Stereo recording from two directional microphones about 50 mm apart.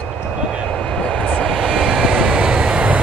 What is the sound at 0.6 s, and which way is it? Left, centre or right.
Vehicle, centre.